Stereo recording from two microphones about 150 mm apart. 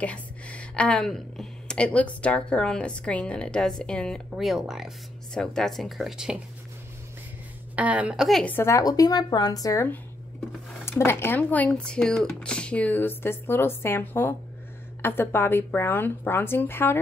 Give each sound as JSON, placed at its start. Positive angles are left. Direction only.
{"t": 0.0, "sound": "a woman's voice", "side_deg": 10}
{"t": 7.7, "sound": "speech", "side_deg": -10}
{"t": 8.5, "sound": "a woman's voice", "side_deg": 15}